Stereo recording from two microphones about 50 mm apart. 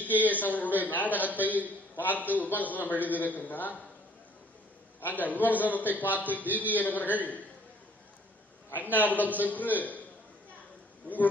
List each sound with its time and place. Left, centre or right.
0.0 s a man's voice: left
5.0 s a man's voice: left
6.4 s a man's voice: right
6.7 s a man's voice: left
8.9 s a man's voice: left